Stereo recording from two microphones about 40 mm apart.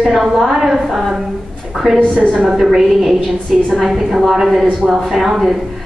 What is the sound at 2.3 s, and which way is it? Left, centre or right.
Speech, right.